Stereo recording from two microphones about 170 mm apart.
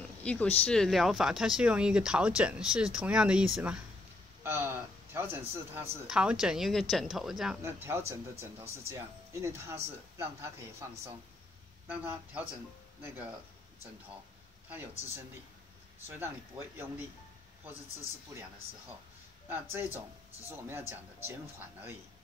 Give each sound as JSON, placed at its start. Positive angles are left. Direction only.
{"t": 0.2, "sound": "speech", "side_deg": 5}
{"t": 4.4, "sound": "a sound", "side_deg": -15}
{"t": 6.0, "sound": "speech", "side_deg": -5}
{"t": 7.6, "sound": "speech", "side_deg": -15}
{"t": 14.7, "sound": "speech", "side_deg": -15}
{"t": 19.5, "sound": "speech", "side_deg": -15}